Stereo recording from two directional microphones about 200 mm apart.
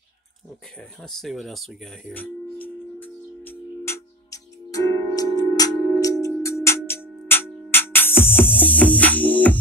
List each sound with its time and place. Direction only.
0.7 s speech: centre (ahead or behind)
3.4 s music: 15° left (ahead or behind)